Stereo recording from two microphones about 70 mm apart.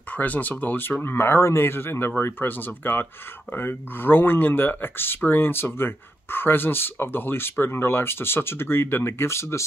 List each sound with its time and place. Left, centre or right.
0.1 s speech: left